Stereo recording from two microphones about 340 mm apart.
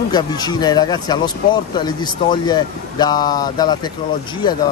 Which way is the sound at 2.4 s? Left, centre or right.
Centre.